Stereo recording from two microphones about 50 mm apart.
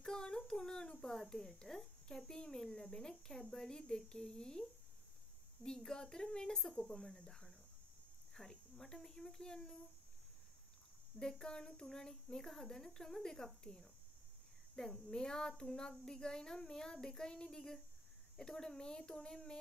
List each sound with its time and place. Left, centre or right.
0.0 s child singing: centre
0.5 s a child's voice: centre
11.1 s a child's voice: centre
15.0 s a child's voice: centre